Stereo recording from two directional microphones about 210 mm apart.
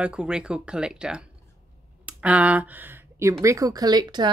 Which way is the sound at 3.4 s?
15° right (ahead or behind).